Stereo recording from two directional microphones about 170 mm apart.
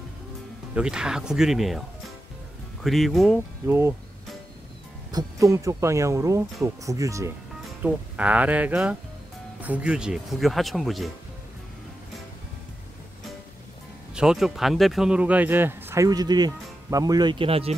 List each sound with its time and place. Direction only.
0.7 s speech: 5° right (ahead or behind)
2.8 s speech: centre (ahead or behind)
3.6 s speech: 15° right (ahead or behind)
5.1 s speech: 20° right (ahead or behind)
7.8 s speech: 10° right (ahead or behind)
14.1 s speech: 5° right (ahead or behind); by 17.7 s 35° right (ahead or behind)